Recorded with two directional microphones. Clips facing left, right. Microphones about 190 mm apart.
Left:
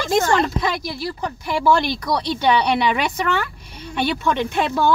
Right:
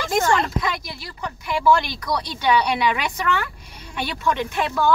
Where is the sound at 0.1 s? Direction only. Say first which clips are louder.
Left 2 dB; 30° left (ahead or behind).